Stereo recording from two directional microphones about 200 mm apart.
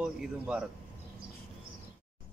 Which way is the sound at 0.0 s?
5° right (ahead or behind).